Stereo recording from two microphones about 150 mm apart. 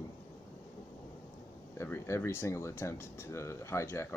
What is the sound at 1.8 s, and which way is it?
Speech, 15° left (ahead or behind).